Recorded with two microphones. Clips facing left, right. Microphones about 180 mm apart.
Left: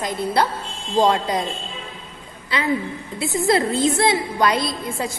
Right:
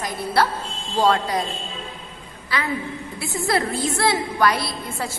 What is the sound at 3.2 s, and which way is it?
A woman's voice, 20° left (ahead or behind).